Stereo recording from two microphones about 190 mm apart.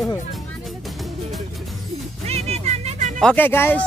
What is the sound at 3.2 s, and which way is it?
Speech, 5° left (ahead or behind).